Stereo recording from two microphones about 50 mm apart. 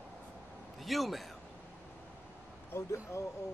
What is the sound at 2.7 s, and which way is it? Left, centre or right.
Speech, left.